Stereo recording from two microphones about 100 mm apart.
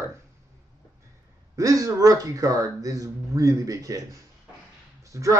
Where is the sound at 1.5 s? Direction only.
35° right (ahead or behind).